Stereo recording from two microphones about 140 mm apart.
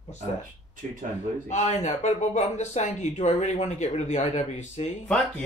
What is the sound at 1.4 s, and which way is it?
Speech, 55° left (ahead or behind).